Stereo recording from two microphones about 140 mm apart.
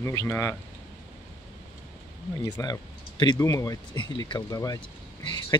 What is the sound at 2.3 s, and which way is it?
Speech, 25° left (ahead or behind).